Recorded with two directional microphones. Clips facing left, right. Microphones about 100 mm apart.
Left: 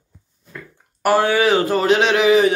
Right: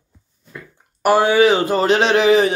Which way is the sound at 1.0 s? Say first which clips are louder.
Right 3 dB; 20° right (ahead or behind).